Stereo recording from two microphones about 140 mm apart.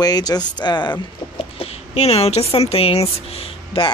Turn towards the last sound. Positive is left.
turn(degrees=45)  # may be behind; listen again after turning